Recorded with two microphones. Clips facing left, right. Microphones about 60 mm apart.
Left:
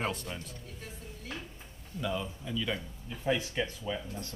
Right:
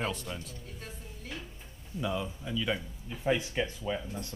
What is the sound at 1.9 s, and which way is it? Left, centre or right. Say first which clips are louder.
A man's voice: right 1 dB; centre.